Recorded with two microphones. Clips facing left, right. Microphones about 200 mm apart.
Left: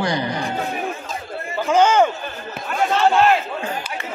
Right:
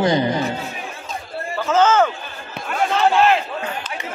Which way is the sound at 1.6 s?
15° left (ahead or behind).